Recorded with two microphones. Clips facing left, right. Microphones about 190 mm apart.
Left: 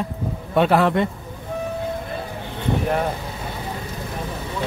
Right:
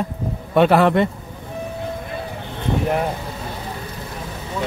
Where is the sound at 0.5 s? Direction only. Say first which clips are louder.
Right 3 dB; 70° right (ahead or behind).